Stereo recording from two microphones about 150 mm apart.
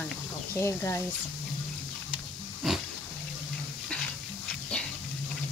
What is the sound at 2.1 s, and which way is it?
Pig, centre (ahead or behind).